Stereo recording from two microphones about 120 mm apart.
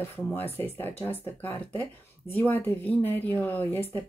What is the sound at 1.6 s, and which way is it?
Speech, 50° left (ahead or behind).